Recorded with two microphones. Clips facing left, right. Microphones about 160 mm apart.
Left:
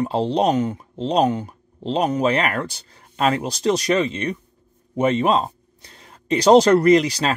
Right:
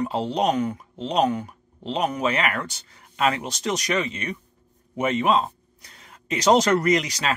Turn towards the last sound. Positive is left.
turn(degrees=30)  # may be behind; listen again after turning